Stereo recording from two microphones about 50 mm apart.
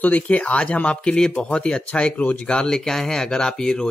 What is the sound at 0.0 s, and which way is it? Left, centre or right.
Speech, left.